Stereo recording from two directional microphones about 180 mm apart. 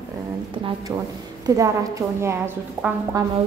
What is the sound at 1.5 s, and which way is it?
A woman's voice, 20° right (ahead or behind).